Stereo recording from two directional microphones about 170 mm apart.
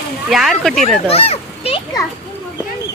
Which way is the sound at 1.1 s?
35° left (ahead or behind).